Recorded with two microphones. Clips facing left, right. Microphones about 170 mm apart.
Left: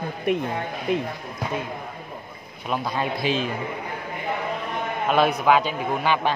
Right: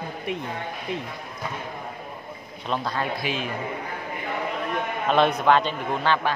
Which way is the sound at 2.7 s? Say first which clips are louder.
Left 1 dB; 15° left (ahead or behind).